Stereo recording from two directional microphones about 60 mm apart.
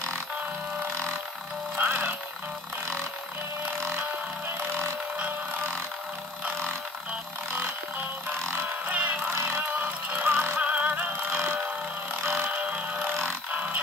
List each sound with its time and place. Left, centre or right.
1.8 s music: right
8.4 s music: right
8.8 s music: right
9.3 s music: right
9.7 s a sound: right
10.3 s music: right
10.6 s music: right
11.3 s a sound: right
12.2 s mechanisms: right
12.4 s music: right
13.5 s a sound: right